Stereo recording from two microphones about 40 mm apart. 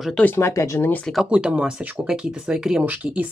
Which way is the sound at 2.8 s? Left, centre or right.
Right.